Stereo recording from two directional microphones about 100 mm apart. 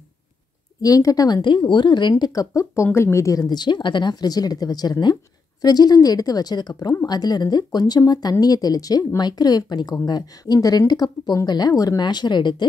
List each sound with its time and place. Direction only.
0.8 s a woman's voice: 35° left (ahead or behind)